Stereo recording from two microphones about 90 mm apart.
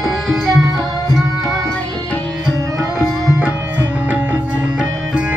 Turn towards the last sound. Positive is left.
turn(degrees=-15)  # may be behind; listen again after turning